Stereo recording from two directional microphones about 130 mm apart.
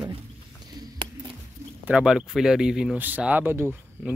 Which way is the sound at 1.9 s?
5° right (ahead or behind).